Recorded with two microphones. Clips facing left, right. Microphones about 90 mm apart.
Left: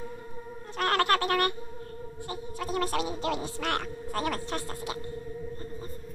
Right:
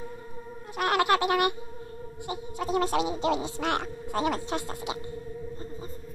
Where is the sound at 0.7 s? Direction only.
15° right (ahead or behind).